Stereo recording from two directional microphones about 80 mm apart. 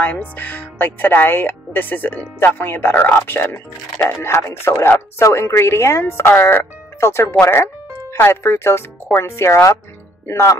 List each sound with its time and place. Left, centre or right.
0.0 s speech: left